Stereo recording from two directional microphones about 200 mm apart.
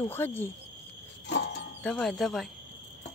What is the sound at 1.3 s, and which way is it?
Music, 55° left (ahead or behind).